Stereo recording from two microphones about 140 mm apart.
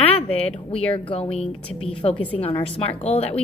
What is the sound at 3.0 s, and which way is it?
Speech, 45° left (ahead or behind).